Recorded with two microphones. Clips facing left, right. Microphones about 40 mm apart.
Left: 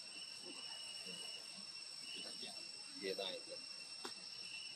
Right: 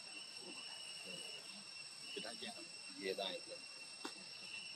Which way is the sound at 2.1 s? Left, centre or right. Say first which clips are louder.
Right 5 dB; right.